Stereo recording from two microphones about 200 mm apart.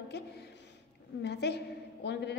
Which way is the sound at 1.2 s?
55° left (ahead or behind).